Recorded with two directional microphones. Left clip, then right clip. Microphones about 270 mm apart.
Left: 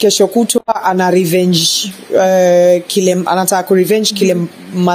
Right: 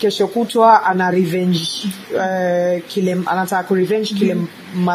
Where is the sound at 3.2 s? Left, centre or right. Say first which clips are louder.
Left 5 dB; left.